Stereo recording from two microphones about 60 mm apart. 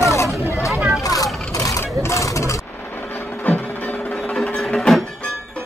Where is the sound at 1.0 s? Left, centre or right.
Left.